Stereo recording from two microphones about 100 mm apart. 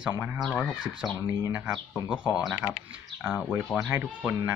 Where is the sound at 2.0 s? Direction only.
10° right (ahead or behind).